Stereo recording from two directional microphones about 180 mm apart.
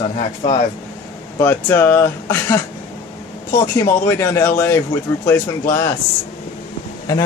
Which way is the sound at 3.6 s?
15° left (ahead or behind).